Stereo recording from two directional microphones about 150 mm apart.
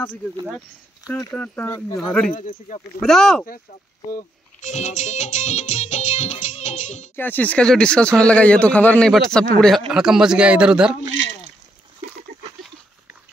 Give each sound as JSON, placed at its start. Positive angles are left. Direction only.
{"t": 1.0, "sound": "a man's voice", "side_deg": 20}
{"t": 4.6, "sound": "music", "side_deg": 55}
{"t": 7.2, "sound": "a man's voice", "side_deg": 10}